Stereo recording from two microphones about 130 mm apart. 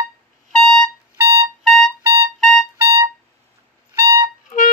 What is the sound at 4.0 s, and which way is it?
Music, 25° right (ahead or behind).